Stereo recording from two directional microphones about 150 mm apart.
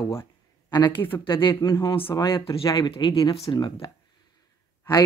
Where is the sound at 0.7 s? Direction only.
30° left (ahead or behind).